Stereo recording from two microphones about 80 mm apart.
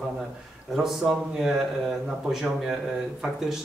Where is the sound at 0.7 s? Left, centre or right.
Centre.